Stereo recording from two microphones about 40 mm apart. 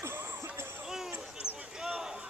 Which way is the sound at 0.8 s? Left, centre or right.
Centre.